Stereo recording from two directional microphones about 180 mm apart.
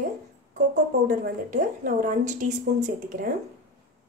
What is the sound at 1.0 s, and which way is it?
Speech, 50° right (ahead or behind).